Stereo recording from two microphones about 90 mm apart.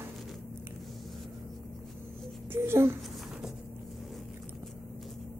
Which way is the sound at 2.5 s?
25° right (ahead or behind).